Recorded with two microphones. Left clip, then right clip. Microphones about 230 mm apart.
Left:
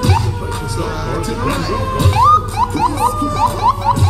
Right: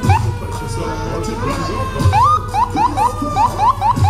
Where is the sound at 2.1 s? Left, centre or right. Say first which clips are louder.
Left 1 dB; centre.